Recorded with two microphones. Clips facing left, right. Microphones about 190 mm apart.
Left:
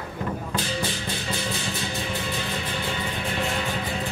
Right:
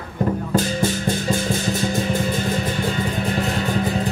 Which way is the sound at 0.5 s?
45° right (ahead or behind).